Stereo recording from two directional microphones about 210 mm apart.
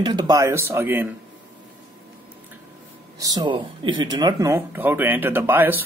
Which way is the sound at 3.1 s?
20° right (ahead or behind).